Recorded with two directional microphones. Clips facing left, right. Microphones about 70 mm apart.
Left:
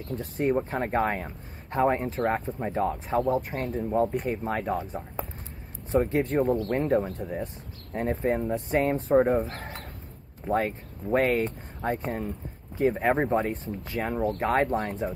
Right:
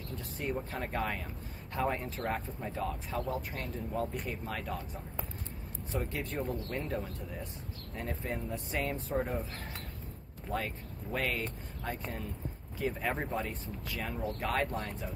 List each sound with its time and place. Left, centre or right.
0.1 s speech: left
3.3 s speech: left
3.7 s speech: left
5.9 s speech: left